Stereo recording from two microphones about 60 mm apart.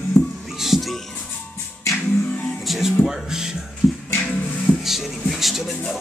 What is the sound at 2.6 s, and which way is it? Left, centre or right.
Music, centre.